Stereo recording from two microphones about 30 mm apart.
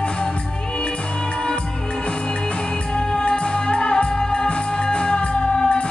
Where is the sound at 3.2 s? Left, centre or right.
Left.